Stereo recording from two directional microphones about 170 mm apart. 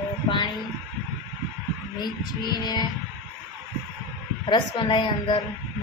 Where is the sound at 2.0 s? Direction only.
25° left (ahead or behind).